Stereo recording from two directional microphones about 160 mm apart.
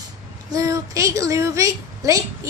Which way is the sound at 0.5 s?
20° right (ahead or behind).